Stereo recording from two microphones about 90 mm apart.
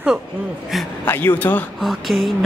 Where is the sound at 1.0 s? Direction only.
25° left (ahead or behind).